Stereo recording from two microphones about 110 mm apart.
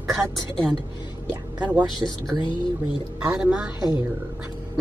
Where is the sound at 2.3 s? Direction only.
45° left (ahead or behind).